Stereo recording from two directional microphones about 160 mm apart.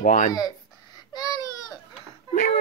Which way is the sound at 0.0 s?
50° left (ahead or behind).